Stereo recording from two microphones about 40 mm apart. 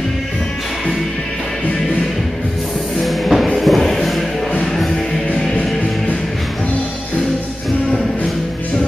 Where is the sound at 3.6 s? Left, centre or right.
Centre.